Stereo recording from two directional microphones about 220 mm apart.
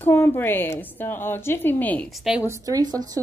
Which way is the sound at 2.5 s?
15° right (ahead or behind).